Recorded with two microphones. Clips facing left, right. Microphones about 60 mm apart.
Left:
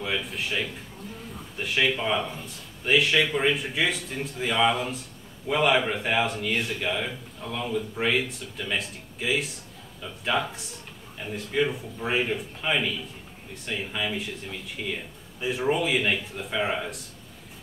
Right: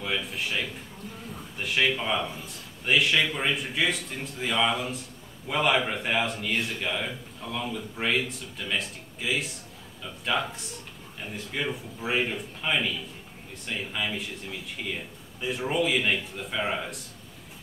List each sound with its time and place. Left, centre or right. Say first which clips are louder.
0.0 s speech: left 1 dB; centre
2.0 s a man's voice: left 2 dB; centre
15.4 s a man's voice: left 2 dB; centre